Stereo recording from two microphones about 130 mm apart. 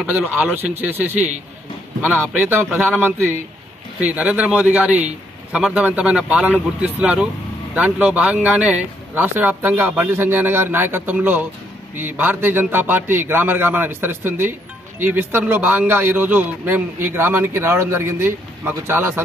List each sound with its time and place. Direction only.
0.0 s a man's voice: 15° right (ahead or behind)
1.1 s a man's voice: 65° right (ahead or behind)
2.0 s a man's voice: 15° right (ahead or behind)